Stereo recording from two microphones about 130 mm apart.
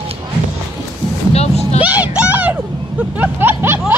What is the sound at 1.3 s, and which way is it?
Speech, 55° left (ahead or behind).